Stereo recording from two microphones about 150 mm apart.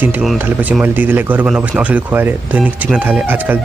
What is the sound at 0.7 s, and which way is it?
Speech, 10° right (ahead or behind).